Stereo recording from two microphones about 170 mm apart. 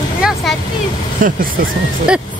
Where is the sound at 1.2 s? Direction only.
50° right (ahead or behind).